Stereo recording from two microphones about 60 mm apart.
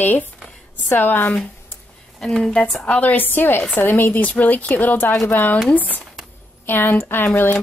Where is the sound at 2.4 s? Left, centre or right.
Centre.